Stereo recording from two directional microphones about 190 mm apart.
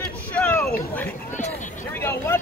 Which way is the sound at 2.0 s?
10° left (ahead or behind).